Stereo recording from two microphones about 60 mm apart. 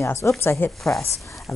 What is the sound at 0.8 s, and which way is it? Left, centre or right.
Speech, centre.